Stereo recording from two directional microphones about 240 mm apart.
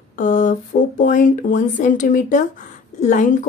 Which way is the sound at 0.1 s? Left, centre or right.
Left.